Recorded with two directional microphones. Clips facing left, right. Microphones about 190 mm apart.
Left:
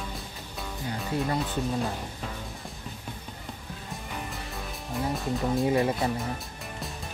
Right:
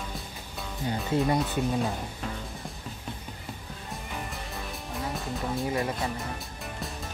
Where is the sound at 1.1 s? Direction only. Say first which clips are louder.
Right 3 dB; 25° right (ahead or behind).